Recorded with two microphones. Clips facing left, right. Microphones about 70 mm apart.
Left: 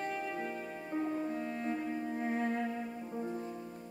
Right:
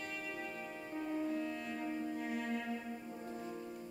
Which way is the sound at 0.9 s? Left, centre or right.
Left.